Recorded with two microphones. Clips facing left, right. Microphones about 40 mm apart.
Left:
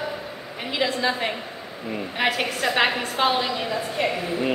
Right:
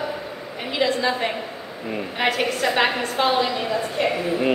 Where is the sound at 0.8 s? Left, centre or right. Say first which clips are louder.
Right 2 dB; centre.